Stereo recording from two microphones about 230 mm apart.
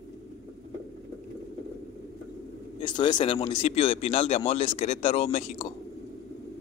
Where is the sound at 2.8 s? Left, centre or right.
Centre.